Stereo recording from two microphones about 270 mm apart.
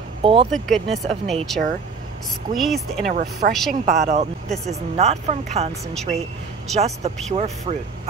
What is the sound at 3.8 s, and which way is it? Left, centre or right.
Speech, right.